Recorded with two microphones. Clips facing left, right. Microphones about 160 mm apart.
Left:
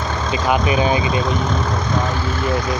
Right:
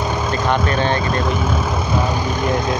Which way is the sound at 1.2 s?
5° right (ahead or behind).